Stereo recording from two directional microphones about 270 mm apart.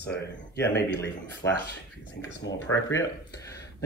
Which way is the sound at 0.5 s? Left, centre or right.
Left.